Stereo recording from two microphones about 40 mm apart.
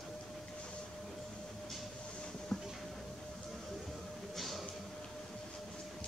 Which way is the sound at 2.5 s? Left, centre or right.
Centre.